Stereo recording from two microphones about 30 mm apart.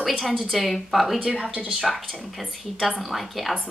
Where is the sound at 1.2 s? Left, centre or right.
Right.